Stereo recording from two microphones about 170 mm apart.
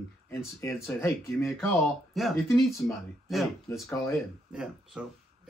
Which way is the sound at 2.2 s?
Centre (ahead or behind).